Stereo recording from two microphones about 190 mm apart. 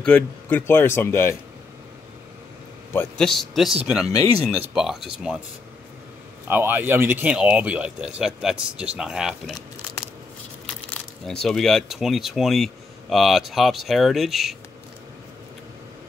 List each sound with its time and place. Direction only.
0.0 s speech: 10° left (ahead or behind)
2.9 s speech: 5° left (ahead or behind)
4.2 s speech: 30° right (ahead or behind)
4.5 s speech: 5° right (ahead or behind)
6.4 s speech: 10° right (ahead or behind)
11.2 s speech: 5° left (ahead or behind)